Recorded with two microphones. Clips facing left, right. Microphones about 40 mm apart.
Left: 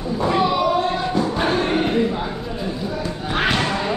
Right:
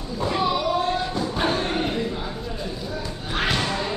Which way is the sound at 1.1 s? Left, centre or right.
Centre.